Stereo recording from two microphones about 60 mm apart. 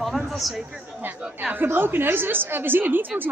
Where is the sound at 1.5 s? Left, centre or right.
Right.